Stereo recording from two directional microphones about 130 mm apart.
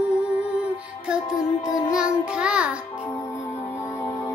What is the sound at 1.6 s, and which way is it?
Child singing, 25° left (ahead or behind).